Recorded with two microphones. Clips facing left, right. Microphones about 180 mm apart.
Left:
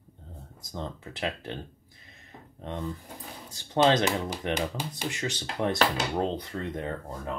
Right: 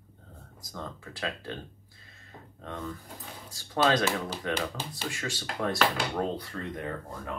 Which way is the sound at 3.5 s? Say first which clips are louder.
Left 3 dB; 25° left (ahead or behind).